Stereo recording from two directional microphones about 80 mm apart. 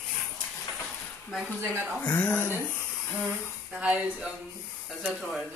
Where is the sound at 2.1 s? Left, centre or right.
Left.